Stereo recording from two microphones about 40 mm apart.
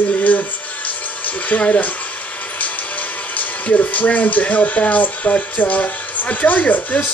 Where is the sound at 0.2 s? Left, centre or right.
Left.